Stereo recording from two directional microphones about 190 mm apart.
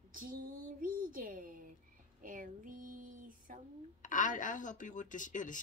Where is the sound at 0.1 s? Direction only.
45° right (ahead or behind).